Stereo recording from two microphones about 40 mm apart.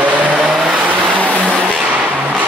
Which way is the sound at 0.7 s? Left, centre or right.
Right.